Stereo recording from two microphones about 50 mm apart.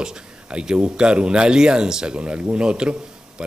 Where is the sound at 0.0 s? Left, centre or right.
Centre.